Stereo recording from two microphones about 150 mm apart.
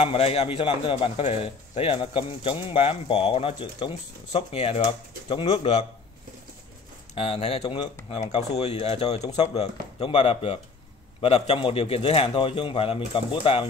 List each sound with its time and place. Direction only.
0.0 s a man's voice: 40° left (ahead or behind)
5.5 s speech: 45° left (ahead or behind)
7.2 s a man's voice: 40° left (ahead or behind)